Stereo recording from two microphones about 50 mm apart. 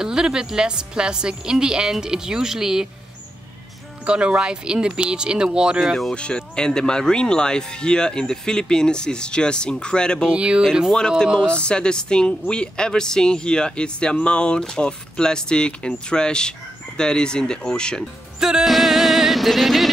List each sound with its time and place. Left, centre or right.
0.0 s a woman's voice: centre
4.0 s speech: right
6.1 s speech: left
10.2 s speech: right
10.9 s speech: centre
18.4 s music: centre